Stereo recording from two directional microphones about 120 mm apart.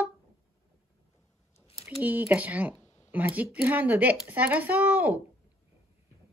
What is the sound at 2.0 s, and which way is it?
Speech, 15° right (ahead or behind).